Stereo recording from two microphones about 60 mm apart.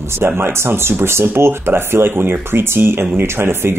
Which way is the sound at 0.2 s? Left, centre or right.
Right.